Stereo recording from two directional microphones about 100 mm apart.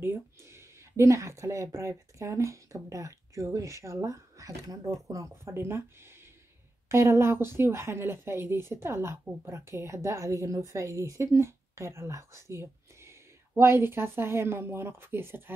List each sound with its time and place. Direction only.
0.0 s a woman's voice: 25° right (ahead or behind)